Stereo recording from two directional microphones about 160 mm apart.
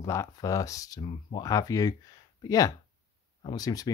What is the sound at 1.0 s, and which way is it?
Speech, 35° left (ahead or behind).